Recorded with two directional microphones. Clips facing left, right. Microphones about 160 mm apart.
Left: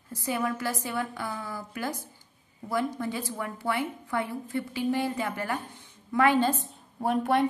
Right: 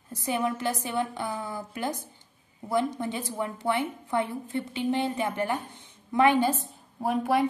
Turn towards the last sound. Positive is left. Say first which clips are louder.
# even
turn(degrees=0)  # may be behind; listen again after turning